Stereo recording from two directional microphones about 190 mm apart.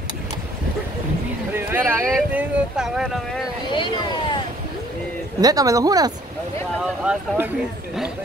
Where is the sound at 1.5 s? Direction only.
10° right (ahead or behind).